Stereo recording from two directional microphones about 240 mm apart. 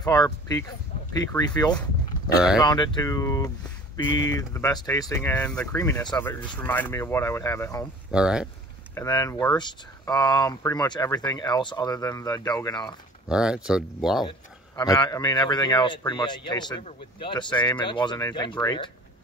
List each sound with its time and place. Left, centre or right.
0.0 s speech: centre
8.1 s speech: centre
8.9 s speech: centre
13.3 s speech: centre
14.8 s speech: centre